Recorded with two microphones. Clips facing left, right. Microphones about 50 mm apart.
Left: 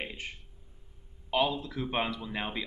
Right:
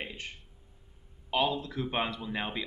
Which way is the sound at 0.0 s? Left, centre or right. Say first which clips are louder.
Left 1 dB; centre.